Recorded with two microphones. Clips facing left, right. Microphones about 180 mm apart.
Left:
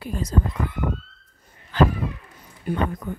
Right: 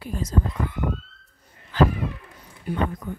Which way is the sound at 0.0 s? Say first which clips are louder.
Left 1 dB; 70° left (ahead or behind).